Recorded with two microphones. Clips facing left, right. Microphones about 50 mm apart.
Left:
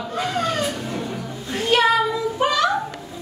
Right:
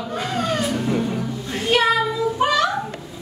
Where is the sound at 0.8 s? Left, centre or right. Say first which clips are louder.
Right 6 dB; centre.